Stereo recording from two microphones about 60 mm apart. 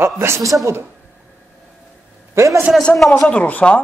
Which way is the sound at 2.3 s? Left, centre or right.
Right.